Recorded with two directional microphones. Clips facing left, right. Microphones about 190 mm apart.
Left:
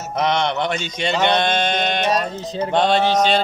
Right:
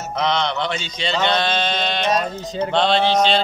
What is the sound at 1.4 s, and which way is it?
Mantra, 50° left (ahead or behind).